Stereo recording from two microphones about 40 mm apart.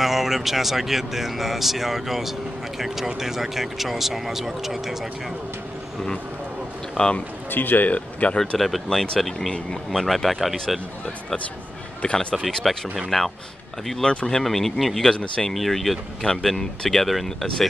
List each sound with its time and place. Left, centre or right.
0.0 s speech: centre
7.0 s speech: left
7.5 s speech: left
8.5 s speech: centre
9.8 s speech: centre
12.0 s speech: left
12.6 s speech: centre